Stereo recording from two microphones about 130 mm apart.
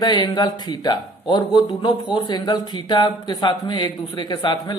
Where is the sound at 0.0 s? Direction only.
35° left (ahead or behind).